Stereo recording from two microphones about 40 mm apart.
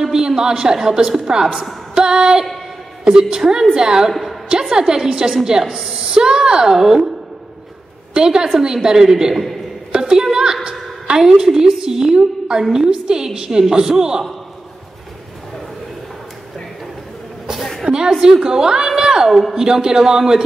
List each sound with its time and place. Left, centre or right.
0.0 s a woman's voice: centre
2.0 s music: centre
3.1 s a woman's voice: centre
4.1 s a sound: centre
4.5 s a woman's voice: centre
8.1 s a woman's voice: centre
17.9 s a woman's voice: right
18.2 s a woman's voice: centre